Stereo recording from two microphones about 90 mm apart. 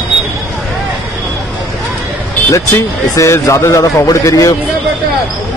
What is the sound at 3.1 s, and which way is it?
Speech, 35° left (ahead or behind).